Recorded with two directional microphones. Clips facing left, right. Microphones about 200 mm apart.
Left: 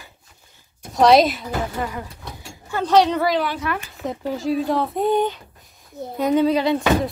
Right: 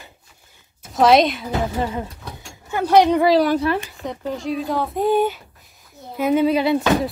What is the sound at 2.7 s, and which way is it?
Speech, 10° right (ahead or behind).